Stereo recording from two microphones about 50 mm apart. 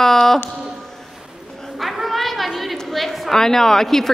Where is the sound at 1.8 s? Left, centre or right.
Centre.